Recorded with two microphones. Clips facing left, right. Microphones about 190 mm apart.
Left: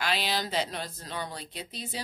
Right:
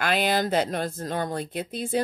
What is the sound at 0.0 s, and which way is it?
Speech, 50° right (ahead or behind).